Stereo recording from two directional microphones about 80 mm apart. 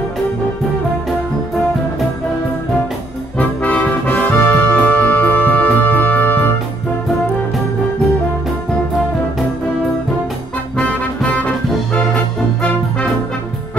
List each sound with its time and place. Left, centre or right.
3.3 s music: centre
10.9 s music: centre